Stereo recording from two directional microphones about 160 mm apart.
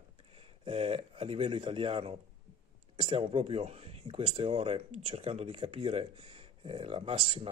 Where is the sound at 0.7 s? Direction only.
40° right (ahead or behind).